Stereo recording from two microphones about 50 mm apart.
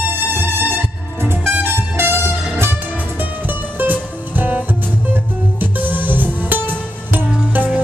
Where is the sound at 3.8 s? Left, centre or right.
Right.